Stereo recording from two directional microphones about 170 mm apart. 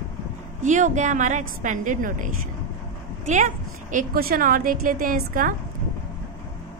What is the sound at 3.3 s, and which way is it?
A woman's voice, 45° right (ahead or behind).